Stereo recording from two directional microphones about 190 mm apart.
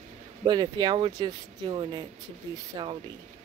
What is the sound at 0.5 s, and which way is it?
Speech, 20° right (ahead or behind).